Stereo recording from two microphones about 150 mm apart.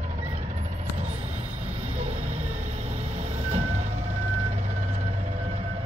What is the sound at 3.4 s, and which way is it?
Vehicle, 45° right (ahead or behind).